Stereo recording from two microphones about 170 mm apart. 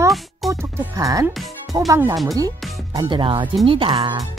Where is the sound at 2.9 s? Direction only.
30° right (ahead or behind).